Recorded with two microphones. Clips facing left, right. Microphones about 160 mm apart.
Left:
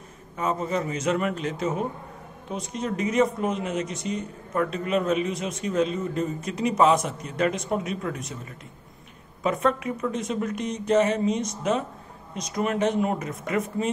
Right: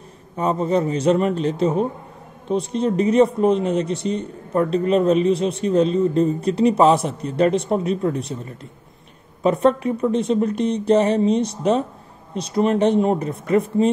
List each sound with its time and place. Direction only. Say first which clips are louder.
0.4 s speech: right 7 dB; 35° right (ahead or behind)